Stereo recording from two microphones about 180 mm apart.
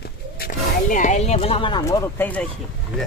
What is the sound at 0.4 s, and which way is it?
Speech, 45° left (ahead or behind).